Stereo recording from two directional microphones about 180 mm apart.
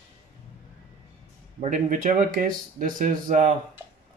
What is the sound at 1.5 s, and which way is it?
Speech, 45° right (ahead or behind).